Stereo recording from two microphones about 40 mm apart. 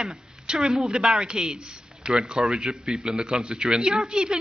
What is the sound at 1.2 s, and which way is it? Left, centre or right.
A man's voice, right.